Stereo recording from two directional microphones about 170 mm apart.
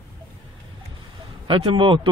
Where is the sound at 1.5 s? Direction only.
30° right (ahead or behind).